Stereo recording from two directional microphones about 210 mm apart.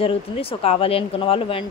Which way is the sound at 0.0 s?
25° left (ahead or behind).